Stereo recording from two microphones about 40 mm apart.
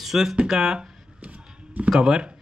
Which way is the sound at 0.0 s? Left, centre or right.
Centre.